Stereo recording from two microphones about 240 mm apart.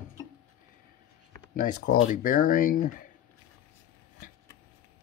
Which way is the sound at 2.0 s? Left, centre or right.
Left.